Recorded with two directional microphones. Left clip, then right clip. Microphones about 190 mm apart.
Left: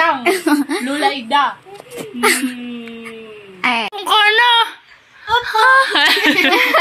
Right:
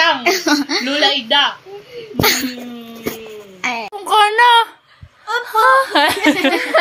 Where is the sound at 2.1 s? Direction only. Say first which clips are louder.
Even; 5° left (ahead or behind).